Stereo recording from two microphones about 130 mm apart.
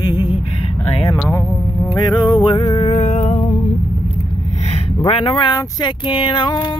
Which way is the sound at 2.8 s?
65° left (ahead or behind).